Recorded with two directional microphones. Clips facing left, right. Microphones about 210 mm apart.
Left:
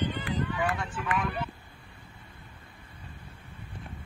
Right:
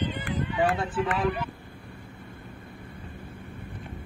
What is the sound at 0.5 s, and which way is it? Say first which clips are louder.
Run: right 6 dB; 35° right (ahead or behind).